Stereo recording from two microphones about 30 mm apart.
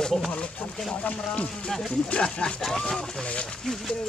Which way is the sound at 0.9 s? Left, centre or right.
Left.